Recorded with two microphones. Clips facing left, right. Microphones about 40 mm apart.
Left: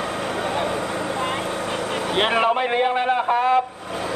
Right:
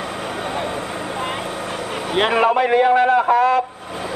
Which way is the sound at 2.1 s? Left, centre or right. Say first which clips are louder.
Right 4 dB; centre.